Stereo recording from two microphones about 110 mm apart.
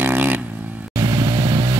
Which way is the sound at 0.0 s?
20° right (ahead or behind).